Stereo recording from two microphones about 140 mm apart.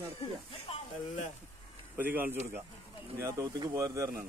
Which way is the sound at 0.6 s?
45° left (ahead or behind).